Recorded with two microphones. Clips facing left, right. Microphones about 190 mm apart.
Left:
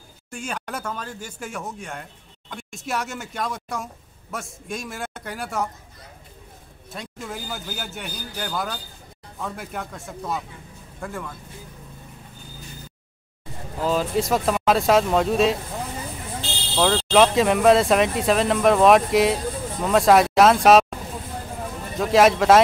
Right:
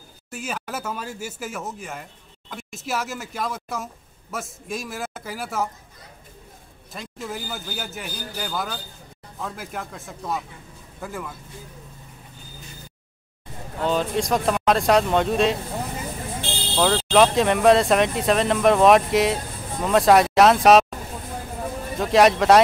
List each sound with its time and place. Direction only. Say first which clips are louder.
0.3 s speech: even; 5° right (ahead or behind)
6.9 s speech: right 1 dB; centre (ahead or behind)
13.7 s speech: left 1 dB; centre (ahead or behind)
16.3 s buzzer: right 2 dB; 55° right (ahead or behind)
16.7 s speech: even; centre (ahead or behind)
21.9 s speech: even; centre (ahead or behind)